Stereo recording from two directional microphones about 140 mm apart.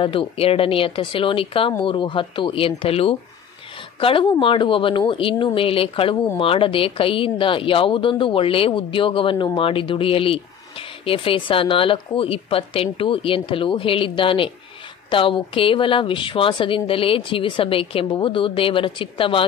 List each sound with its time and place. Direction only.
0.0 s speech: 40° left (ahead or behind)